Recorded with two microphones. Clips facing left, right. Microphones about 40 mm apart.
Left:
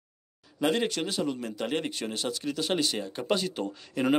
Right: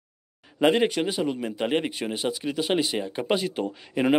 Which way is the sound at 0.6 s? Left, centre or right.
Right.